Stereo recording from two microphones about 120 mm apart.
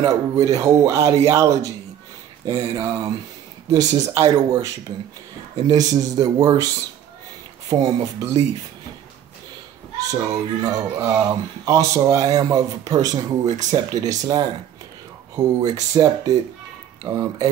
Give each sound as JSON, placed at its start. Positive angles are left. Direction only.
{"t": 0.0, "sound": "speech", "side_deg": -30}
{"t": 5.7, "sound": "speech", "side_deg": -30}
{"t": 7.8, "sound": "speech", "side_deg": -30}
{"t": 10.1, "sound": "speech", "side_deg": -30}